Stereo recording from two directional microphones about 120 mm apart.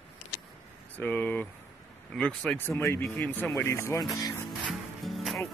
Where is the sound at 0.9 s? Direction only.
10° left (ahead or behind).